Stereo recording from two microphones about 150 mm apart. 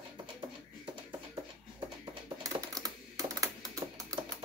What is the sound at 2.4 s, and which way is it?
Typing, 25° right (ahead or behind).